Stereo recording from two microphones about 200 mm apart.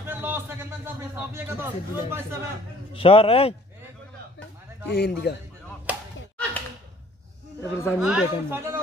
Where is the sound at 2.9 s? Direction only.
25° left (ahead or behind).